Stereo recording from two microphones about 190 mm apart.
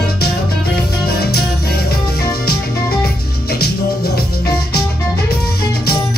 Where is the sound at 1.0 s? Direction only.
55° left (ahead or behind).